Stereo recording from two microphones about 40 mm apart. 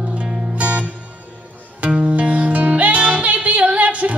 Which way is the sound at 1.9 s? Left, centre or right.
Right.